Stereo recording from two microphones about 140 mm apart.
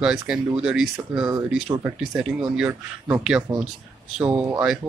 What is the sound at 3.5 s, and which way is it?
Speech, 15° right (ahead or behind).